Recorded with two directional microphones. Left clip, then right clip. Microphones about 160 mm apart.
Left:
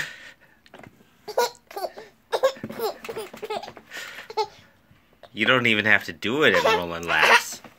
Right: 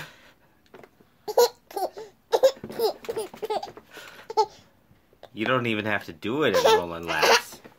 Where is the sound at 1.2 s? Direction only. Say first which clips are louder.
Right 4 dB; 35° right (ahead or behind).